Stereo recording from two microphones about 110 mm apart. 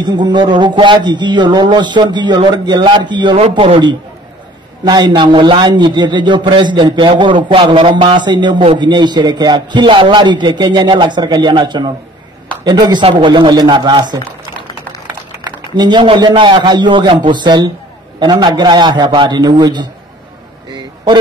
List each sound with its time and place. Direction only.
0.0 s a man's voice: 45° right (ahead or behind)
15.7 s a man's voice: 45° right (ahead or behind)
20.7 s a sound: 40° right (ahead or behind)